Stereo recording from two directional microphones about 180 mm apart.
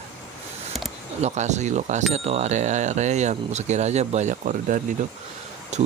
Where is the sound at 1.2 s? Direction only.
40° right (ahead or behind).